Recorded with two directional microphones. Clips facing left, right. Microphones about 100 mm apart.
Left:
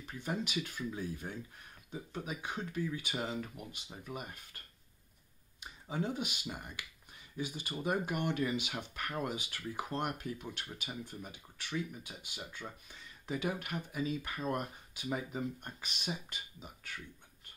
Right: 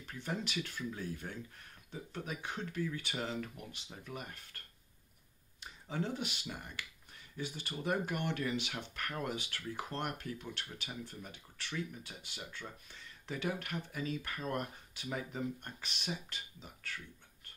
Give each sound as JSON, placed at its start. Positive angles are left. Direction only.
{"t": 0.0, "sound": "speech", "side_deg": 10}
{"t": 5.6, "sound": "speech", "side_deg": 10}